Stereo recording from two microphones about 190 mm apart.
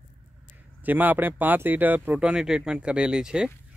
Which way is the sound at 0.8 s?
10° right (ahead or behind).